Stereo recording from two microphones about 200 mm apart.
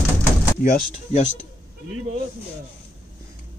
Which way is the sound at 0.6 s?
40° left (ahead or behind).